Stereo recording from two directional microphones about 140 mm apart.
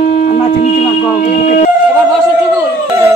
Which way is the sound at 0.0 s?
60° left (ahead or behind).